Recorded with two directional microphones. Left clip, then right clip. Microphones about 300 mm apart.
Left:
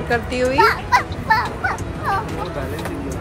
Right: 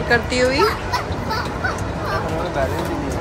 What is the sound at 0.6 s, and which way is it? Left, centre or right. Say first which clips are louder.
Fowl: left 4 dB; left.